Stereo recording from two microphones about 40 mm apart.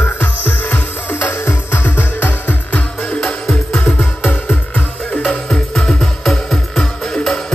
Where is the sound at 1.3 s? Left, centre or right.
Left.